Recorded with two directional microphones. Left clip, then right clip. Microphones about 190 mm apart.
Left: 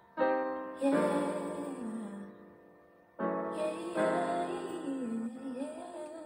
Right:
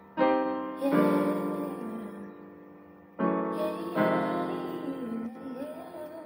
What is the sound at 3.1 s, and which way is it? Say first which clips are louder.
Music: right 5 dB; 30° right (ahead or behind).